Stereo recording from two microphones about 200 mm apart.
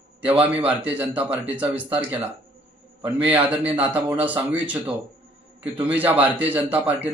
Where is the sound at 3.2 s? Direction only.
10° right (ahead or behind).